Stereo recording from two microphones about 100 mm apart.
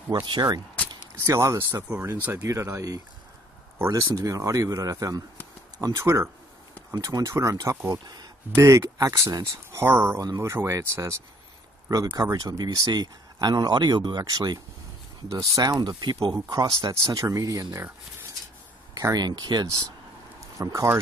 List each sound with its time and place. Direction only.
0.1 s speech: 45° right (ahead or behind)
1.1 s speech: 30° right (ahead or behind)
2.4 s speech: 30° right (ahead or behind)
6.9 s speech: 35° right (ahead or behind)
7.9 s speech: 45° right (ahead or behind)
8.5 s speech: 30° right (ahead or behind)
12.2 s speech: 40° right (ahead or behind)
18.9 s speech: 40° right (ahead or behind)